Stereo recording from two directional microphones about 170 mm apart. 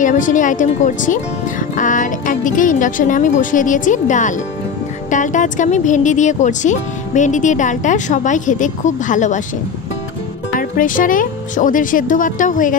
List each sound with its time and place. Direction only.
0.0 s speech: 50° left (ahead or behind)
10.8 s speech: 50° left (ahead or behind)